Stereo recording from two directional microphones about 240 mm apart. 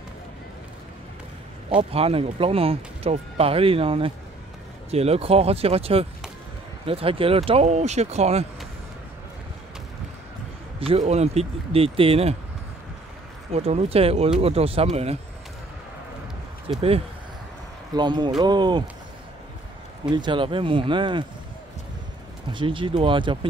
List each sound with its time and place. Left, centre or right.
1.8 s speech: right
10.8 s speech: right
13.5 s speech: right
16.7 s speech: right
17.9 s speech: centre
20.1 s speech: centre
22.5 s speech: right